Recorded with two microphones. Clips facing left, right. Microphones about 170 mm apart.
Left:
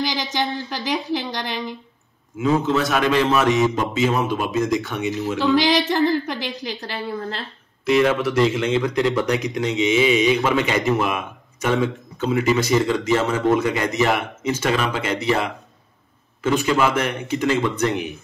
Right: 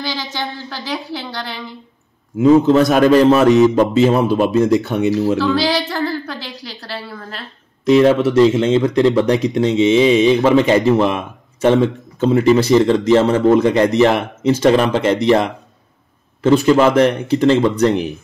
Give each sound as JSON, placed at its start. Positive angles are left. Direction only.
{"t": 0.0, "sound": "a woman's voice", "side_deg": 15}
{"t": 2.3, "sound": "speech", "side_deg": -40}
{"t": 5.4, "sound": "a woman's voice", "side_deg": 15}
{"t": 7.9, "sound": "speech", "side_deg": -30}